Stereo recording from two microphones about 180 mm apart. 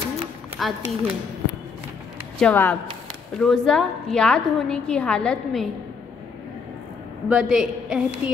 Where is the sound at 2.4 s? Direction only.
10° left (ahead or behind).